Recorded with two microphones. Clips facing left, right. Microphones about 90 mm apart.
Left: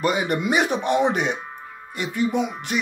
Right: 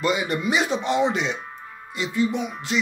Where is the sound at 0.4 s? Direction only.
55° left (ahead or behind).